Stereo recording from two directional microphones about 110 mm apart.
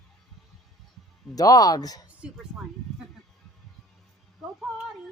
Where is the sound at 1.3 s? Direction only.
35° left (ahead or behind).